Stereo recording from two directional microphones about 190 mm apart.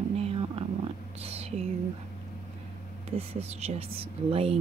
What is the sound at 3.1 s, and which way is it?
Speech, 30° right (ahead or behind).